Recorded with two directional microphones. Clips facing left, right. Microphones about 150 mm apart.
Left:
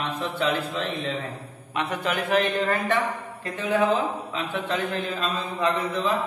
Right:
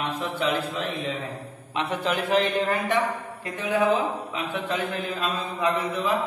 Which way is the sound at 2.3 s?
15° right (ahead or behind).